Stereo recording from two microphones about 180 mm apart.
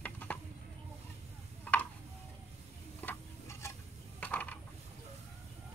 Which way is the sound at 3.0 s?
15° left (ahead or behind).